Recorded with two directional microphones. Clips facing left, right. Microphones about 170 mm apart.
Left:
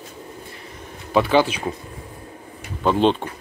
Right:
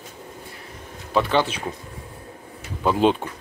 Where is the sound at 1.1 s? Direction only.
5° left (ahead or behind).